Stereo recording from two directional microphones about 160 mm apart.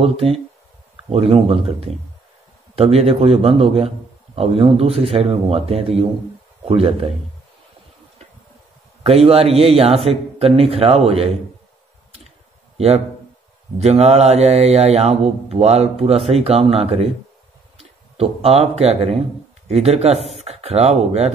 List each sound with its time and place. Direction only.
0.0 s speech: 40° right (ahead or behind)
9.0 s speech: 40° right (ahead or behind)
12.7 s a man's voice: 40° right (ahead or behind)
18.1 s speech: 40° right (ahead or behind)